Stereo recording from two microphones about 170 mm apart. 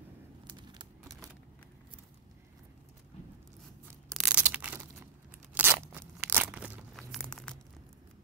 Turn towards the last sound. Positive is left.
turn(degrees=5)  # may be behind; listen again after turning